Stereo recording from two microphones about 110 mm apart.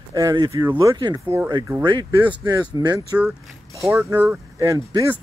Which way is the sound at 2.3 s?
40° right (ahead or behind).